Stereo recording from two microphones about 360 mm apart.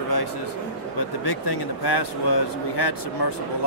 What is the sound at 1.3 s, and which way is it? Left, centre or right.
Speech, left.